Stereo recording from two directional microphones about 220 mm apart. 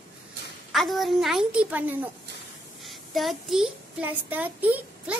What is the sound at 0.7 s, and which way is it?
A woman's voice, centre (ahead or behind).